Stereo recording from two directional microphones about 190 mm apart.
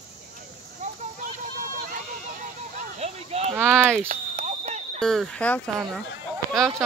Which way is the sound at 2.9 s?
35° right (ahead or behind).